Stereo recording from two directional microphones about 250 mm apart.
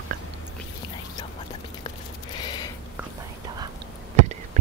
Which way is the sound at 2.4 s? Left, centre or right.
Centre.